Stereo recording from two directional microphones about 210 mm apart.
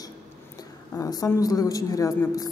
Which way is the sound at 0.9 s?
15° left (ahead or behind).